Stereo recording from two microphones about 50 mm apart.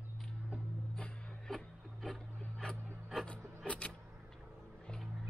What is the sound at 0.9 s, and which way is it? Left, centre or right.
Music, left.